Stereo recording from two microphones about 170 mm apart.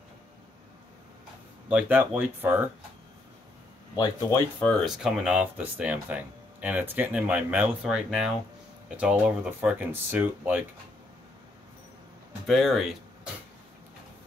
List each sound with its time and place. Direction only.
1.7 s speech: 10° right (ahead or behind)
3.9 s speech: 20° left (ahead or behind)
4.6 s speech: centre (ahead or behind)
12.4 s speech: centre (ahead or behind)